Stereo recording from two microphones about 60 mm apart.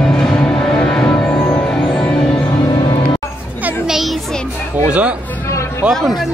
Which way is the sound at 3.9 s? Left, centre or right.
Centre.